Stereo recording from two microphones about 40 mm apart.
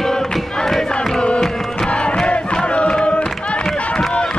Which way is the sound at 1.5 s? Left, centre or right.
Centre.